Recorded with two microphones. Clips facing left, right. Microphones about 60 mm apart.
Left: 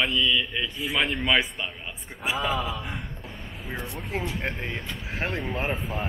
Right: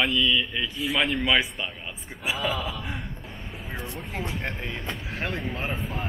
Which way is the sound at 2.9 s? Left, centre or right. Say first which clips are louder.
Even; centre.